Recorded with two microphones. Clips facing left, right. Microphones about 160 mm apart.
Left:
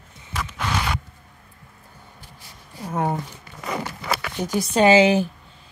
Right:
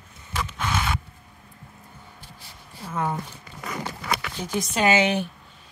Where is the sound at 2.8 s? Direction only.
40° left (ahead or behind).